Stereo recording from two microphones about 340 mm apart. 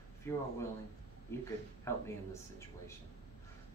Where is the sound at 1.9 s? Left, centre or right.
Centre.